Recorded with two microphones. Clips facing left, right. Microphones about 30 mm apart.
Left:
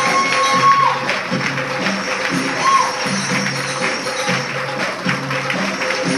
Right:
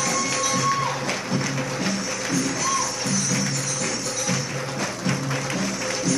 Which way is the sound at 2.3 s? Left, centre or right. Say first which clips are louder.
Left 9 dB; left.